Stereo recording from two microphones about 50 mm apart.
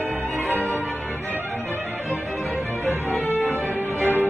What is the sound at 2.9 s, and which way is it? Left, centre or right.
Music, right.